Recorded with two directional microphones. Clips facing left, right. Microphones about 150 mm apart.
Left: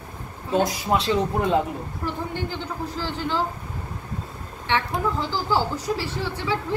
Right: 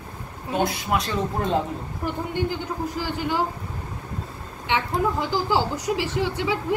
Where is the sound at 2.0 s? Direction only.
15° right (ahead or behind).